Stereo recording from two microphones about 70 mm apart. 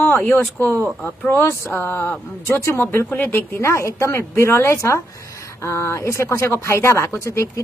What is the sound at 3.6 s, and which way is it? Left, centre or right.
Speech, left.